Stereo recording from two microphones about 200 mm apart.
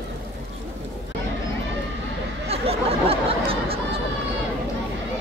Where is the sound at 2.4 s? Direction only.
30° right (ahead or behind).